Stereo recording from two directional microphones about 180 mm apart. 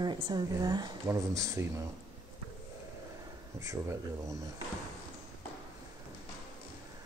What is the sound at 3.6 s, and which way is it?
Speech, 15° right (ahead or behind).